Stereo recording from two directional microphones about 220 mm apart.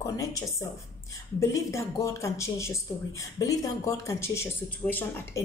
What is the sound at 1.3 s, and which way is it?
Speech, 15° left (ahead or behind).